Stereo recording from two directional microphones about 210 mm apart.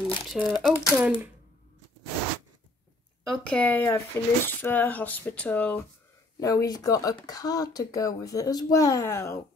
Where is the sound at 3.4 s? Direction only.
5° left (ahead or behind).